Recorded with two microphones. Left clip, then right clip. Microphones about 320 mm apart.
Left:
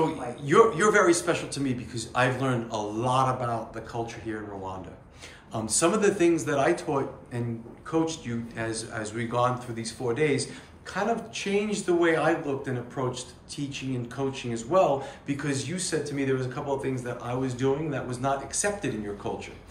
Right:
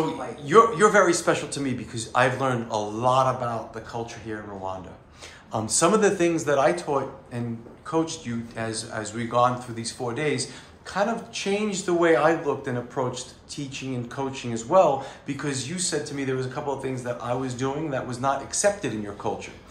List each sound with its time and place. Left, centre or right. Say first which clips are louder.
0.5 s speech: right 3 dB; centre